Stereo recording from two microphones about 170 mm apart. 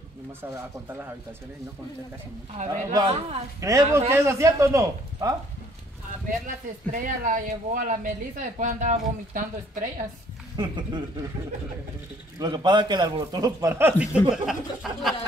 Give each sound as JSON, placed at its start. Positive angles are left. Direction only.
{"t": 0.4, "sound": "speech", "side_deg": -15}
{"t": 2.7, "sound": "a man's voice", "side_deg": -20}
{"t": 3.1, "sound": "a man's voice", "side_deg": -40}
{"t": 3.6, "sound": "a man's voice", "side_deg": -20}
{"t": 6.4, "sound": "speech", "side_deg": -50}
{"t": 10.5, "sound": "speech", "side_deg": -25}
{"t": 12.4, "sound": "a man's voice", "side_deg": -25}